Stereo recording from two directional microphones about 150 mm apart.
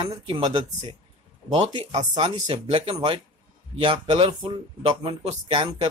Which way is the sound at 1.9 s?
35° right (ahead or behind).